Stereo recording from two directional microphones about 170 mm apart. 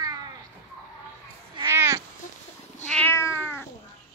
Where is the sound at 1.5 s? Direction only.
15° right (ahead or behind).